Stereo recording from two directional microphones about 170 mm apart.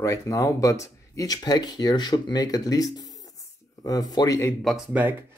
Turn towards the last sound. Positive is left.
turn(degrees=-10)  # may be behind; listen again after turning